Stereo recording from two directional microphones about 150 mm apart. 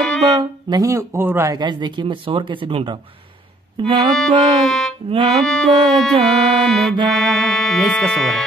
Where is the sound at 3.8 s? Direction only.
30° right (ahead or behind).